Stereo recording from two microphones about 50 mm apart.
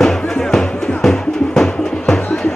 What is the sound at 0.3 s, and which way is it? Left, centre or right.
Music, centre.